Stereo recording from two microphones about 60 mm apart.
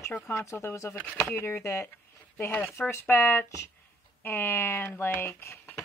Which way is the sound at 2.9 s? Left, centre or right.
Left.